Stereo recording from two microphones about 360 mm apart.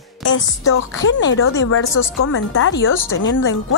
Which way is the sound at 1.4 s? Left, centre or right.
Left.